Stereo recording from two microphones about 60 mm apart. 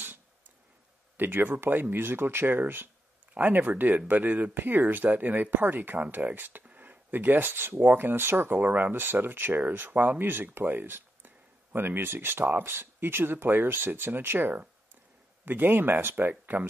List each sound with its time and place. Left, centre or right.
1.1 s speech: right